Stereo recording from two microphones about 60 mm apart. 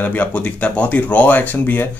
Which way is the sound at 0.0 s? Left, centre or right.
Left.